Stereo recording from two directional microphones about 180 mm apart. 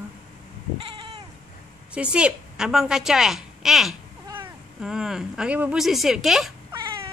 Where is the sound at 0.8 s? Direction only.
30° right (ahead or behind).